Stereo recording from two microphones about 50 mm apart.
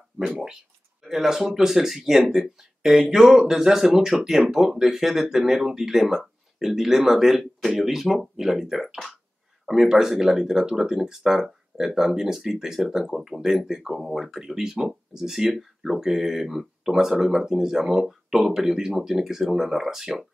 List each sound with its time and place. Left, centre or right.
1.0 s speech: centre